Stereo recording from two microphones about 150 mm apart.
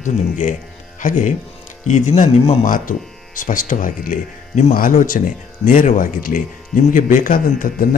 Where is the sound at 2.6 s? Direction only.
65° left (ahead or behind).